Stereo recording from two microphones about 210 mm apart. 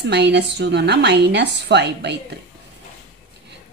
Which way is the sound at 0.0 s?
55° right (ahead or behind).